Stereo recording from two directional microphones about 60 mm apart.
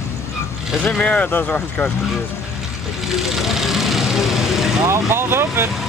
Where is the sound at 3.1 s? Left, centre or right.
Centre.